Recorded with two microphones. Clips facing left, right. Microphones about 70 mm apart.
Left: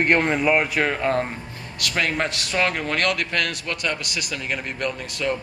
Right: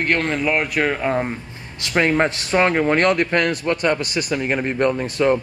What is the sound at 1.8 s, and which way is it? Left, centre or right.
A man's voice, right.